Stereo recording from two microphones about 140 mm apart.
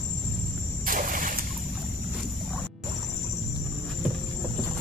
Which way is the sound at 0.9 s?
80° right.